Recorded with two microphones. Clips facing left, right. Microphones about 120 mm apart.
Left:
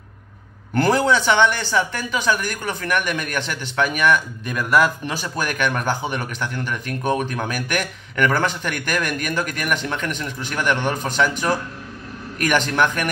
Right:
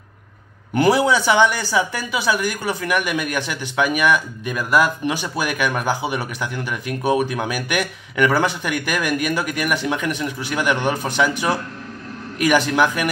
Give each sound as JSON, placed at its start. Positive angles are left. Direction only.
{"t": 0.7, "sound": "a man's voice", "side_deg": -10}
{"t": 12.4, "sound": "a man's voice", "side_deg": -10}